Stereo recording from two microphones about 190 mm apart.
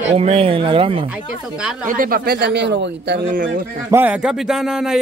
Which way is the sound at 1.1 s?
5° right (ahead or behind).